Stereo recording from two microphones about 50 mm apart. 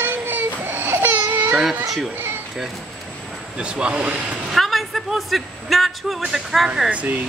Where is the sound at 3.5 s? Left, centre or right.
Centre.